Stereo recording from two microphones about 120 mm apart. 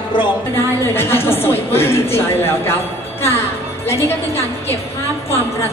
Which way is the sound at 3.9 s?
20° left (ahead or behind).